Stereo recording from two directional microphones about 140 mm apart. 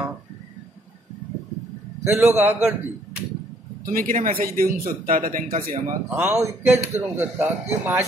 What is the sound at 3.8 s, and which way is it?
A man's voice, 85° right.